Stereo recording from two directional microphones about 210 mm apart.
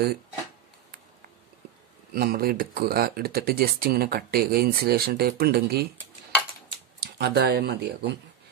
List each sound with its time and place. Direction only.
2.1 s speech: 45° right (ahead or behind)
7.0 s speech: 50° right (ahead or behind)